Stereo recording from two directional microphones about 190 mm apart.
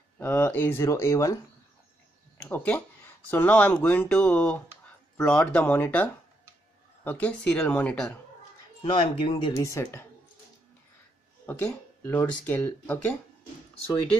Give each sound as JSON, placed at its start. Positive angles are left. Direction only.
{"t": 0.2, "sound": "speech", "side_deg": 10}
{"t": 8.8, "sound": "speech", "side_deg": 30}
{"t": 9.6, "sound": "speech", "side_deg": 15}
{"t": 12.0, "sound": "speech", "side_deg": 10}